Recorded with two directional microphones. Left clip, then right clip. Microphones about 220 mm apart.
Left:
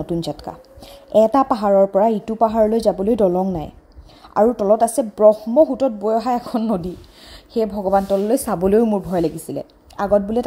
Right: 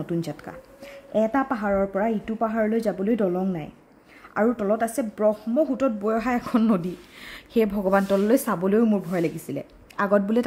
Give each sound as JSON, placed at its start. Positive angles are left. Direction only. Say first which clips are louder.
{"t": 0.0, "sound": "speech", "louder": "left 6 dB", "side_deg": 15}
{"t": 7.5, "sound": "a woman's voice", "louder": "left 2 dB", "side_deg": -25}
{"t": 8.1, "sound": "speech", "louder": "left 3 dB", "side_deg": 5}